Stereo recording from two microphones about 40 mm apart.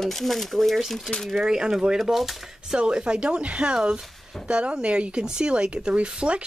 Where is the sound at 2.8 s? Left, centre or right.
Right.